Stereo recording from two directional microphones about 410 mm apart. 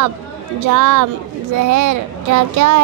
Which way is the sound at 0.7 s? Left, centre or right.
Right.